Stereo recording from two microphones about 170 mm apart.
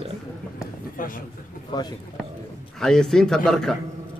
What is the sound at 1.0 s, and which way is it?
Speech, 55° left (ahead or behind).